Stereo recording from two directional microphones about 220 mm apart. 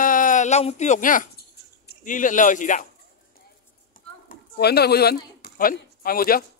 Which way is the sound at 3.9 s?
40° left (ahead or behind).